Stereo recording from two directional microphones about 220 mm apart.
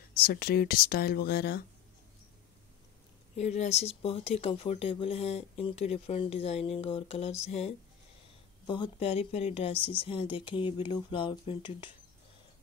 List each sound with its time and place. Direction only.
0.1 s speech: 45° left (ahead or behind)
3.3 s speech: 30° left (ahead or behind)